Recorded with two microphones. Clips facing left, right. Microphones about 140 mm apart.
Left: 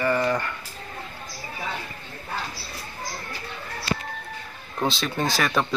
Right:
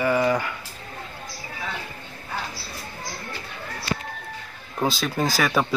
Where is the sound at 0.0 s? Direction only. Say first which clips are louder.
Right 2 dB; 5° right (ahead or behind).